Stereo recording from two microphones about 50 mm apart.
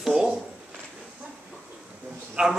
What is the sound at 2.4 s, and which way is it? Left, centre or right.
Speech, centre.